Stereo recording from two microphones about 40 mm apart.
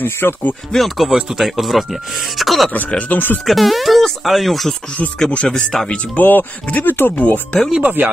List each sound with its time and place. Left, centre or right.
0.0 s speech: left
0.7 s speech: centre
3.1 s speech: left
3.4 s speech: centre
5.5 s speech: centre
6.1 s speech: left
7.1 s speech: left
7.8 s speech: right